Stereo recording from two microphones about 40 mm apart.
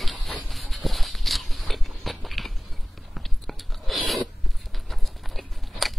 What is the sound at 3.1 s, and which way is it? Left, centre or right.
Biting, centre.